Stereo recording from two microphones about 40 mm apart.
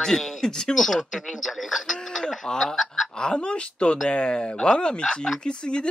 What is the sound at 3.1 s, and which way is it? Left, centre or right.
Speech, left.